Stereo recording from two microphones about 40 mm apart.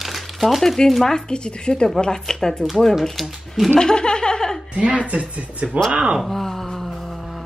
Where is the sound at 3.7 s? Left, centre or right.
Centre.